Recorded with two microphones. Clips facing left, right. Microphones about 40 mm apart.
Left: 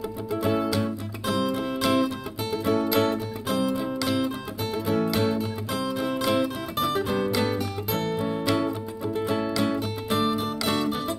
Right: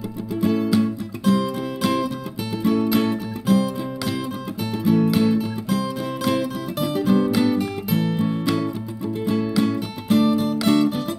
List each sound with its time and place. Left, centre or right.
0.7 s music: centre